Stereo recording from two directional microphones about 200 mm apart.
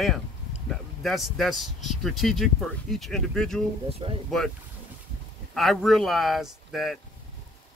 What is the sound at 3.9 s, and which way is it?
Speech, 30° right (ahead or behind).